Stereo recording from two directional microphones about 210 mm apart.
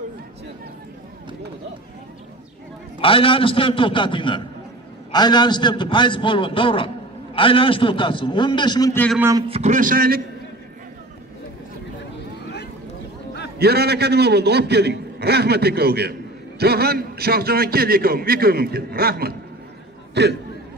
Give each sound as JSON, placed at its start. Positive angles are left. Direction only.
{"t": 3.0, "sound": "a man's voice", "side_deg": 25}
{"t": 8.9, "sound": "a man's voice", "side_deg": 5}
{"t": 9.5, "sound": "a man's voice", "side_deg": -35}
{"t": 13.6, "sound": "a man's voice", "side_deg": -50}